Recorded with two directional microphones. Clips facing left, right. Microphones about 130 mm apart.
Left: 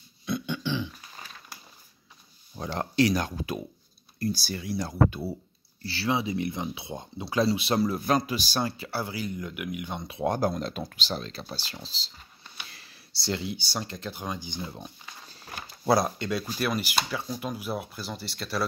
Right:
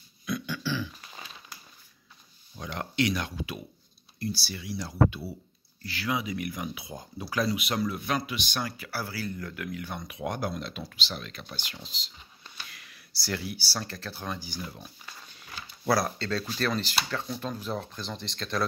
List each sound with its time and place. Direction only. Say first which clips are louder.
0.2 s a sound: left 2 dB; 25° left (ahead or behind)
2.5 s speech: left 5 dB; 35° left (ahead or behind)
5.8 s speech: left 3 dB; 30° left (ahead or behind)
15.8 s speech: left 3 dB; 20° left (ahead or behind); by 18.7 s 5° left (ahead or behind)